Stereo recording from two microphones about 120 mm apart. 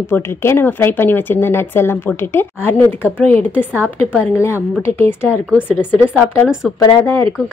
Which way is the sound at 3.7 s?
10° right (ahead or behind).